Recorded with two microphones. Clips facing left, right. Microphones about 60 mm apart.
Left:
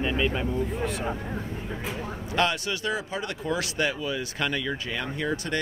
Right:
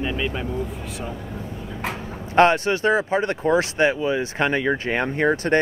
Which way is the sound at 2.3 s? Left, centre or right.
Right.